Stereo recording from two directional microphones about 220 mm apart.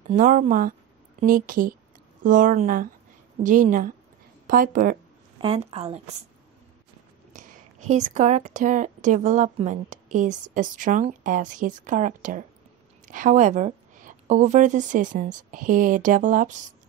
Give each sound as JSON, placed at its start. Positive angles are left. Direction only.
{"t": 0.0, "sound": "a woman's voice", "side_deg": -35}
{"t": 5.4, "sound": "speech", "side_deg": -25}
{"t": 7.3, "sound": "a woman's voice", "side_deg": -35}